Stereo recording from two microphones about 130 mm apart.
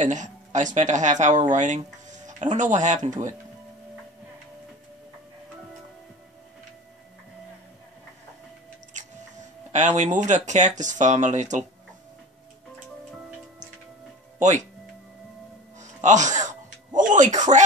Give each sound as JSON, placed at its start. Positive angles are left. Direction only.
{"t": 0.0, "sound": "speech", "side_deg": -70}
{"t": 9.0, "sound": "squish", "side_deg": -70}
{"t": 9.7, "sound": "speech", "side_deg": -65}
{"t": 15.8, "sound": "music", "side_deg": -70}